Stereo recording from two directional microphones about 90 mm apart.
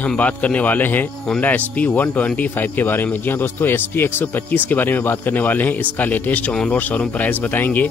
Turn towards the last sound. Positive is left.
turn(degrees=20)  # may be behind; listen again after turning